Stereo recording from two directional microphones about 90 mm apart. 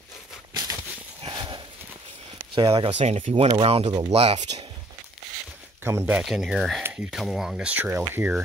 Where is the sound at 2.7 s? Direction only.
90° right.